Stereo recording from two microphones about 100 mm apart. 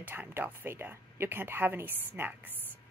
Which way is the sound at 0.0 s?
20° right (ahead or behind).